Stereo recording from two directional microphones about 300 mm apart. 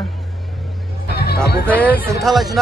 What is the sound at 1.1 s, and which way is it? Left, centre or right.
Music, left.